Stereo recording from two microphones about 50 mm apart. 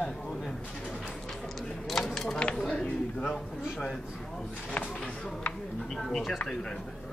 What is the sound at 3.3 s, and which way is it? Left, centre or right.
Speech, centre.